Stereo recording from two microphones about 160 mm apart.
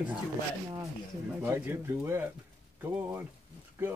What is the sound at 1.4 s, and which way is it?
Speech, 15° right (ahead or behind).